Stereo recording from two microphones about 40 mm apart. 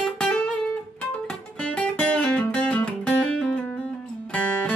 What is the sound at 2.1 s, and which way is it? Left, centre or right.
Music, left.